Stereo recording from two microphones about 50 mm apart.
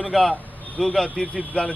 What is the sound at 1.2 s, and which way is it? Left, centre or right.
Speech, left.